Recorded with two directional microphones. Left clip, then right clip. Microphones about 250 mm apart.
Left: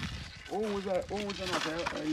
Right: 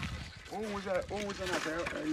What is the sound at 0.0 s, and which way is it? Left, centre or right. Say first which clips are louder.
Liquid: left 1 dB; centre.